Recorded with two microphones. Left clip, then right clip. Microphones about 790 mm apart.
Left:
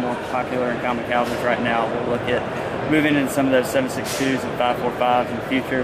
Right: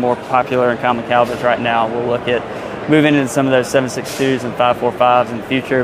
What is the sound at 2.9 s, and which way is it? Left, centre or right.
Speech, right.